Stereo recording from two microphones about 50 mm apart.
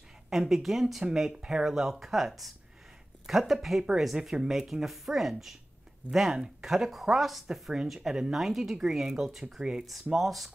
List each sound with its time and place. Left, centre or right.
0.3 s speech: centre
10.1 s speech: centre